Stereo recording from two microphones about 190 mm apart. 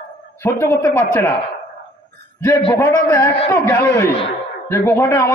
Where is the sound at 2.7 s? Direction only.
10° left (ahead or behind).